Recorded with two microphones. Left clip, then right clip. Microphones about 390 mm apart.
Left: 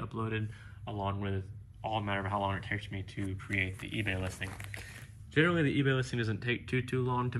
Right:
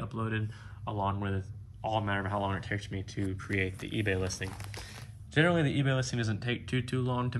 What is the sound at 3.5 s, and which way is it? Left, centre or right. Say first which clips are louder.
Speech: even; right.